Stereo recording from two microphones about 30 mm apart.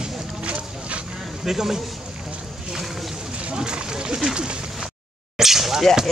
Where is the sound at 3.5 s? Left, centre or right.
Right.